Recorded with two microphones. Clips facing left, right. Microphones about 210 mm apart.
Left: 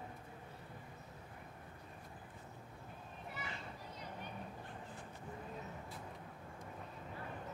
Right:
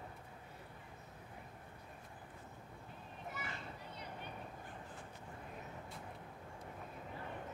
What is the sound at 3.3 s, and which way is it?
Children playing, 45° right (ahead or behind).